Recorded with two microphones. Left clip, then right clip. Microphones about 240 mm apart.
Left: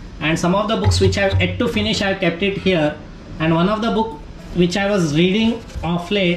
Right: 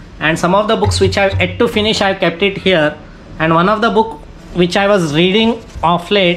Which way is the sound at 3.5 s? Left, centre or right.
Centre.